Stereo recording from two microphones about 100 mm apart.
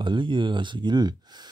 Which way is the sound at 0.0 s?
55° right (ahead or behind).